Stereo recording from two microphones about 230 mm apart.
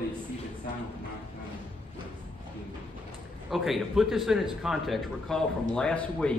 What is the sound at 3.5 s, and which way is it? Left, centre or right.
A man's voice, centre.